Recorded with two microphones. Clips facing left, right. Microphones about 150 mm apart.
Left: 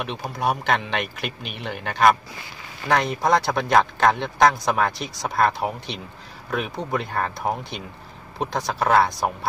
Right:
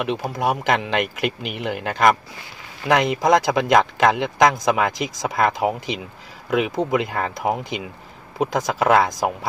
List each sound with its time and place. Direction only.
0.0 s speech: 90° right